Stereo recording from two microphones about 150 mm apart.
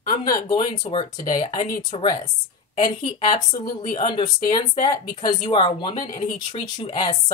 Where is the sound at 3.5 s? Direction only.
55° left (ahead or behind).